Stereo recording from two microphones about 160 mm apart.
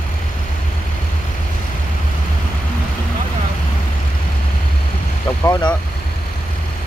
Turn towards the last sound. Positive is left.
turn(degrees=25)  # may be behind; listen again after turning